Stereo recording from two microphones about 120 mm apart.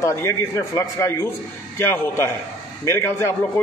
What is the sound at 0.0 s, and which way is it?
A man's voice, 25° left (ahead or behind).